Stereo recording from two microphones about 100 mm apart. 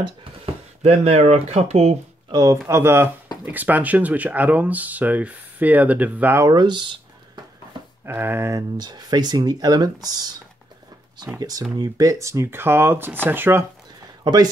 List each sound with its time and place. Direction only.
0.8 s speech: 90° right
2.3 s speech: 35° right (ahead or behind)
2.7 s speech: 25° right (ahead or behind)
6.4 s a sound: 45° right (ahead or behind)
8.0 s speech: 20° right (ahead or behind)
8.5 s speech: 45° right (ahead or behind); by 13.7 s 20° right (ahead or behind)
14.2 s speech: 40° right (ahead or behind)